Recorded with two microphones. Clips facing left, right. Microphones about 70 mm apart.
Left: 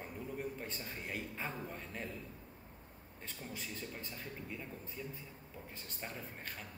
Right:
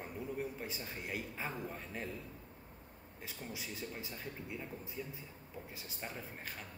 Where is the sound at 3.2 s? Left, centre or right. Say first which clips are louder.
Right 1 dB; centre.